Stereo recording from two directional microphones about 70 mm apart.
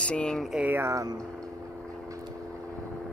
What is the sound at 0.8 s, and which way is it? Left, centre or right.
Speech, right.